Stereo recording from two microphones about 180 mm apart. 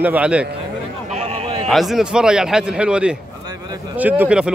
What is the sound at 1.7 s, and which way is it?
Speech, centre (ahead or behind).